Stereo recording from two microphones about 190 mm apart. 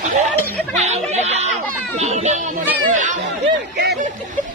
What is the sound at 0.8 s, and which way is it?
Speech, 35° right (ahead or behind).